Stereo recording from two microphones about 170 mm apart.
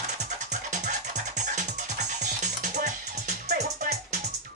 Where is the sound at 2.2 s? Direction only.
45° right (ahead or behind).